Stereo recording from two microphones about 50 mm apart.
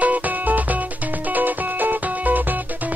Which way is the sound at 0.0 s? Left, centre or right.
Right.